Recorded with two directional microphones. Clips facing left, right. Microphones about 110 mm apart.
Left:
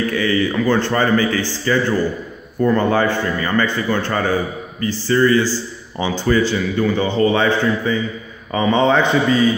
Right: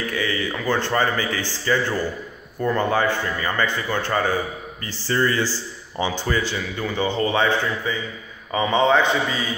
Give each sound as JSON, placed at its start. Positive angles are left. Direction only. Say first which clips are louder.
{"t": 0.1, "sound": "a man's voice", "louder": "left 7 dB", "side_deg": -15}
{"t": 5.0, "sound": "a man's voice", "louder": "left 6 dB", "side_deg": -25}